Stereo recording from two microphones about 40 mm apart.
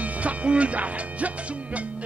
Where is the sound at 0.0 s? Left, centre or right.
Right.